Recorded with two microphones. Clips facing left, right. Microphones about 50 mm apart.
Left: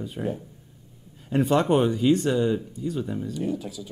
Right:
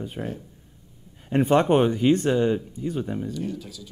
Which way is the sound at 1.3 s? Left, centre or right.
Right.